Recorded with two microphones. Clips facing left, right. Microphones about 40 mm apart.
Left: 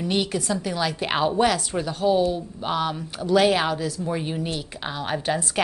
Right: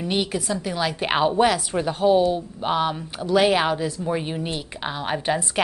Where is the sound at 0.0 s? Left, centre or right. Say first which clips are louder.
Even; centre.